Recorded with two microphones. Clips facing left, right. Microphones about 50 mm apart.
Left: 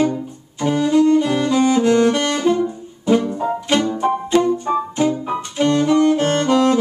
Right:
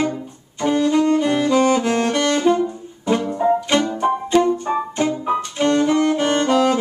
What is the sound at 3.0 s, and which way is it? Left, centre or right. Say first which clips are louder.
Music: even; centre.